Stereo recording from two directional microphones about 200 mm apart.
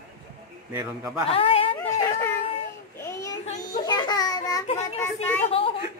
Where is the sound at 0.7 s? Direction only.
10° right (ahead or behind).